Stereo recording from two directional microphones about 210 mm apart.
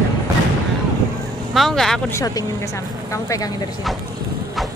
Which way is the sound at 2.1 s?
15° left (ahead or behind).